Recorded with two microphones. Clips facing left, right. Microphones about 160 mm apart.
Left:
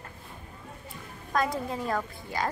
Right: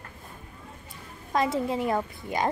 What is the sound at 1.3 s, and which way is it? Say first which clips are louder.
A woman's voice: right 3 dB; 25° right (ahead or behind).